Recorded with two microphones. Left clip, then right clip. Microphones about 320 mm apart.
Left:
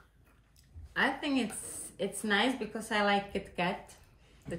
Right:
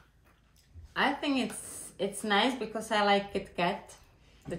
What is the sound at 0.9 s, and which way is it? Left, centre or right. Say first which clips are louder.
Speech: right 2 dB; centre.